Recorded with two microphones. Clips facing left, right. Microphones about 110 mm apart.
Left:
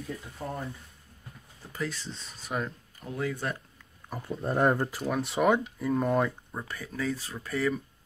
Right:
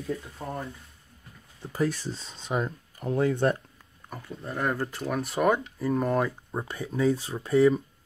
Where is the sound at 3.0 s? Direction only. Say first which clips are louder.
Right 9 dB; 65° right (ahead or behind).